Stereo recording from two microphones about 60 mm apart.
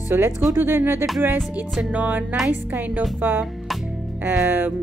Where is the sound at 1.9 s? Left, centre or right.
Right.